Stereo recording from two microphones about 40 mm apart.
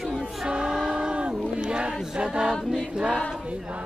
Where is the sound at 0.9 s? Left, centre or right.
Right.